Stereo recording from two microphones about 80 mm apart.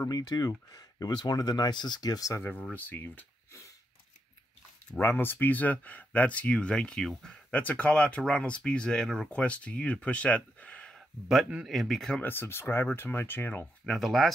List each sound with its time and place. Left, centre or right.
0.0 s speech: left
2.7 s speech: left
5.0 s speech: left; by 7.4 s centre
7.5 s speech: centre
11.0 s speech: centre
12.2 s speech: left
13.8 s speech: centre